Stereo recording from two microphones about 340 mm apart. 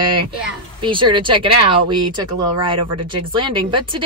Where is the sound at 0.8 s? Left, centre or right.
Centre.